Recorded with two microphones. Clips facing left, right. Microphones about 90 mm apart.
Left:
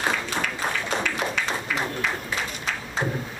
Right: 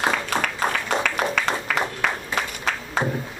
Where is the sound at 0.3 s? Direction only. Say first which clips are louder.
Right 4 dB; 55° right (ahead or behind).